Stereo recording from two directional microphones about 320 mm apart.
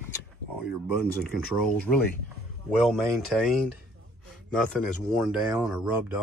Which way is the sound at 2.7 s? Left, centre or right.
Centre.